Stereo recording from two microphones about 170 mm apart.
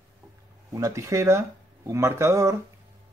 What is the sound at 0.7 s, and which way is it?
Speech, 20° right (ahead or behind).